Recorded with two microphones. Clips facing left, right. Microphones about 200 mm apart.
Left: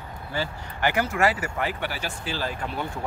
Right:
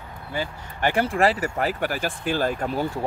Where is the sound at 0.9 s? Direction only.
30° right (ahead or behind); by 2.7 s 50° right (ahead or behind).